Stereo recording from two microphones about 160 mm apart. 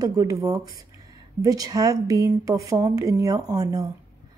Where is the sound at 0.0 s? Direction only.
25° right (ahead or behind).